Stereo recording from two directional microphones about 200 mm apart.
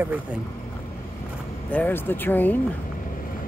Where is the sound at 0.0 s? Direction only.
10° right (ahead or behind).